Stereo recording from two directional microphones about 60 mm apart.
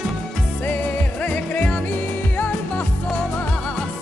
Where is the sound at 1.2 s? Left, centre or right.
Left.